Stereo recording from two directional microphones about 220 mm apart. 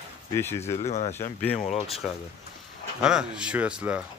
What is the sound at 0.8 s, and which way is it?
Speech, 30° left (ahead or behind).